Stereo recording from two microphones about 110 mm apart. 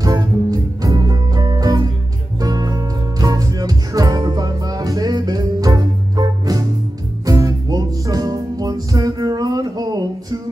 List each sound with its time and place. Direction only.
0.0 s music: 30° right (ahead or behind)